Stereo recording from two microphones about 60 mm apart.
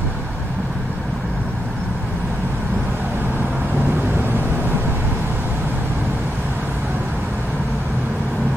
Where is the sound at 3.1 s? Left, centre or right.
Right.